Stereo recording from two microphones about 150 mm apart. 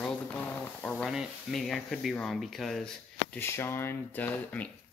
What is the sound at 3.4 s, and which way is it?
Speech, 15° left (ahead or behind).